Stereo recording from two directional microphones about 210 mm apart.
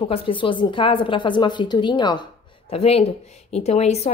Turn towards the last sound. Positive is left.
turn(degrees=30)  # may be behind; listen again after turning